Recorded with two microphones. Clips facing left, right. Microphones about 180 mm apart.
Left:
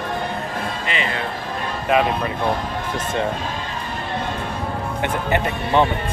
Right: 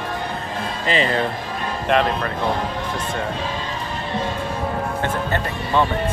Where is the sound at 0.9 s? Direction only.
35° right (ahead or behind).